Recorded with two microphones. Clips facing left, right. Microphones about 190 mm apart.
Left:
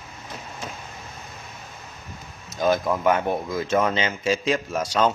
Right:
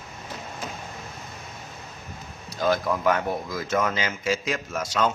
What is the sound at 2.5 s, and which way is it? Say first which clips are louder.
Speech: left 2 dB; 20° left (ahead or behind).